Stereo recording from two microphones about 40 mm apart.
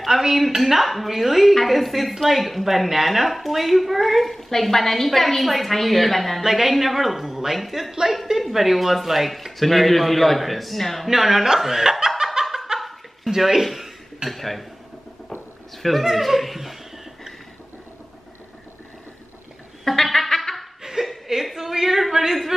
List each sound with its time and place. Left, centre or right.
0.0 s a woman's voice: centre
11.1 s speech: centre
12.7 s laughter: centre
13.3 s speech: centre
13.7 s a sound: centre
14.4 s a woman's voice: centre
15.8 s a woman's voice: centre
19.8 s music: centre
21.0 s chuckle: centre
21.5 s speech: centre